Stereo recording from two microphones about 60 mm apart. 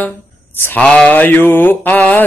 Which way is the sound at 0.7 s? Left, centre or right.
Centre.